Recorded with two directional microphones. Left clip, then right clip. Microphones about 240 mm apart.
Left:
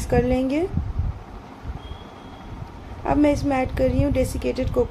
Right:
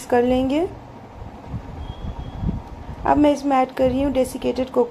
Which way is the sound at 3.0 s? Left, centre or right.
Centre.